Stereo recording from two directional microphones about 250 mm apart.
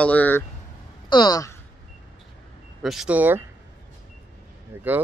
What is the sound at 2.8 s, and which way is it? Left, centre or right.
Speech, centre.